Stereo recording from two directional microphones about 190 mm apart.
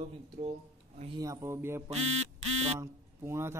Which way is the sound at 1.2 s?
15° right (ahead or behind).